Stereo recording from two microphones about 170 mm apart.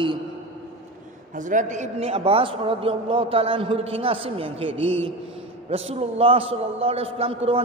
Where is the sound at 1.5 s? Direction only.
45° right (ahead or behind).